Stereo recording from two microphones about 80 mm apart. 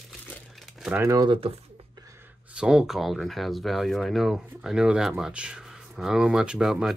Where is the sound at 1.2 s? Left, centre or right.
Right.